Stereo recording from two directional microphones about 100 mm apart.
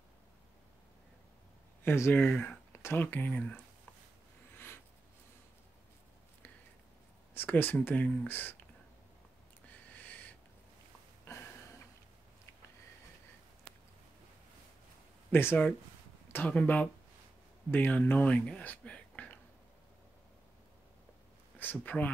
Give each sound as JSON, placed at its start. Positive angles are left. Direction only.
{"t": 1.9, "sound": "speech", "side_deg": 20}
{"t": 2.7, "sound": "speech", "side_deg": 25}
{"t": 7.3, "sound": "speech", "side_deg": 20}
{"t": 9.9, "sound": "a sound", "side_deg": 15}
{"t": 15.3, "sound": "speech", "side_deg": 20}
{"t": 21.5, "sound": "speech", "side_deg": 15}